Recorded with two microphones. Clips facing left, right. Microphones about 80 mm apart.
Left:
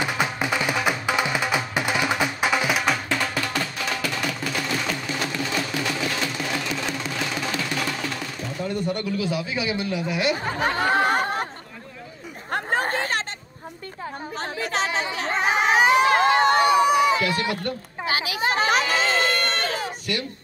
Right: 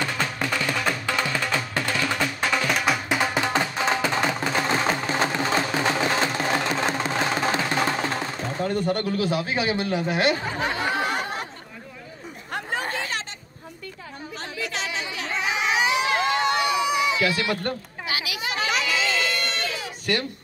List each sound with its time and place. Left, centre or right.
0.0 s music: centre
3.1 s music: centre; by 10.3 s right
10.4 s chatter: left
12.4 s chatter: left
14.6 s crowd: left
18.0 s a sound: left